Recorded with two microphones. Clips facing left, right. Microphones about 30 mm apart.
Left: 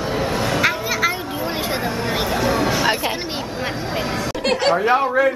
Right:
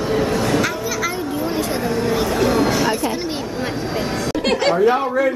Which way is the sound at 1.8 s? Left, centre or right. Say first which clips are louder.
Right 3 dB; left.